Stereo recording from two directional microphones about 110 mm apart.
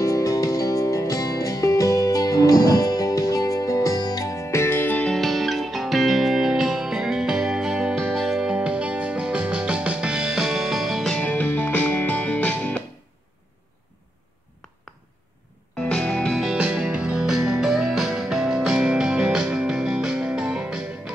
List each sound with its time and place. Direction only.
0.0 s music: 30° left (ahead or behind); by 5.1 s 15° left (ahead or behind)
5.1 s music: centre (ahead or behind)
15.8 s music: 5° left (ahead or behind)